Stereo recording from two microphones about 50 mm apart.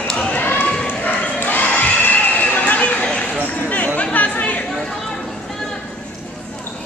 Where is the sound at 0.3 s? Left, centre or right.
Left.